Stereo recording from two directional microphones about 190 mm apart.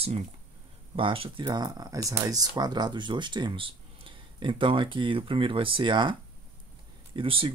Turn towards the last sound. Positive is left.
turn(degrees=-30)  # may be behind; listen again after turning